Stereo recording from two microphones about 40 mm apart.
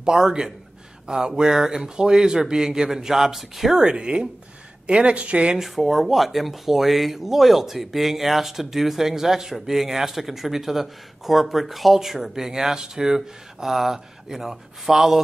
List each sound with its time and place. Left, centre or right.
0.0 s speech: centre
3.7 s speech: centre
5.6 s speech: centre